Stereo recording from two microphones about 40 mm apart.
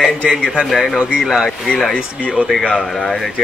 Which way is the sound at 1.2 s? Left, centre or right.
Centre.